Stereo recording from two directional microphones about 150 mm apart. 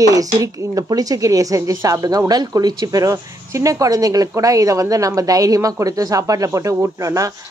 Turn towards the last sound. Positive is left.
turn(degrees=-20)  # may be behind; listen again after turning